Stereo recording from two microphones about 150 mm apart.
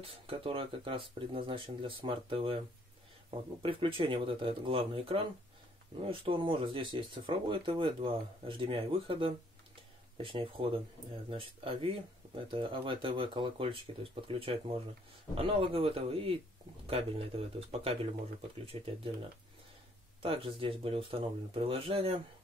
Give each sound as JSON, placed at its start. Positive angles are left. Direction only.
{"t": 0.0, "sound": "speech", "side_deg": -40}
{"t": 3.6, "sound": "speech", "side_deg": -35}
{"t": 20.2, "sound": "speech", "side_deg": -35}